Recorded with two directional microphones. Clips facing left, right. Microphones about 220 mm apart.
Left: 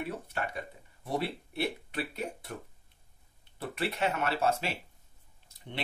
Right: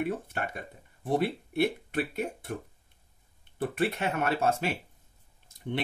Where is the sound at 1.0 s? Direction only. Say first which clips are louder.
Right 6 dB; 50° right (ahead or behind).